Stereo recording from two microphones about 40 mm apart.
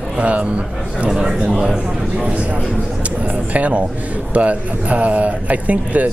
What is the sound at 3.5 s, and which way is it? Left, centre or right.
A man's voice, right.